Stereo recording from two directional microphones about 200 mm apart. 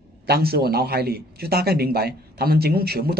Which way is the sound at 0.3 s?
50° right (ahead or behind).